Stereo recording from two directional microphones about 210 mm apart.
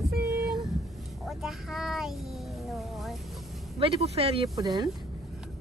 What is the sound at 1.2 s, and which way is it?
Speech, centre (ahead or behind).